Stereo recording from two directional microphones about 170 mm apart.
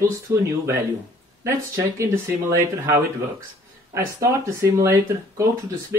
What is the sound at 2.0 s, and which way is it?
Speech, 15° right (ahead or behind).